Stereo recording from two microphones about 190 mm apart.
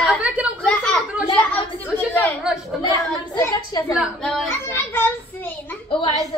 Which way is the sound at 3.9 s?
Centre (ahead or behind).